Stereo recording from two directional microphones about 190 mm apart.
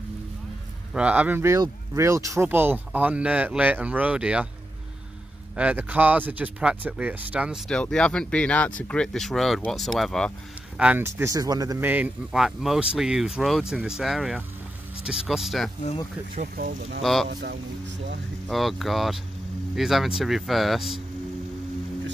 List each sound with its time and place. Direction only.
0.9 s speech: 5° right (ahead or behind)
5.6 s speech: 10° right (ahead or behind)
10.8 s speech: 10° right (ahead or behind)
16.3 s speech: 50° right (ahead or behind)
17.0 s speech: centre (ahead or behind)
17.3 s speech: 60° right (ahead or behind)
18.5 s speech: centre (ahead or behind)